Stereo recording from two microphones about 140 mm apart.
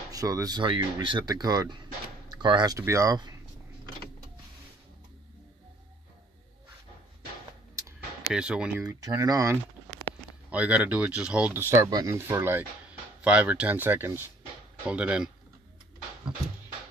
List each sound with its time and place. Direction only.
0.1 s speech: 25° right (ahead or behind)
8.3 s speech: 5° right (ahead or behind)
8.8 s speech: 25° right (ahead or behind)
10.5 s speech: 10° right (ahead or behind)